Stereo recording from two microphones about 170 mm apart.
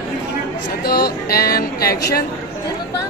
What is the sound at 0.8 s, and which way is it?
Speech, 65° left (ahead or behind).